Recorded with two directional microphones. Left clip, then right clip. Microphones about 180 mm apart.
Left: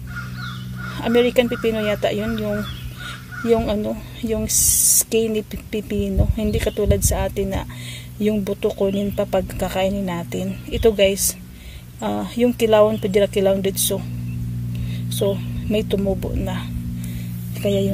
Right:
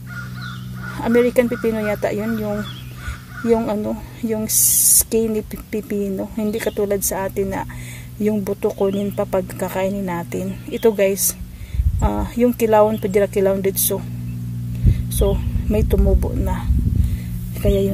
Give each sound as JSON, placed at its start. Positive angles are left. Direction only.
{"t": 0.9, "sound": "speech", "side_deg": -10}
{"t": 3.5, "sound": "speech", "side_deg": -10}
{"t": 15.0, "sound": "speech", "side_deg": -10}
{"t": 17.6, "sound": "speech", "side_deg": -15}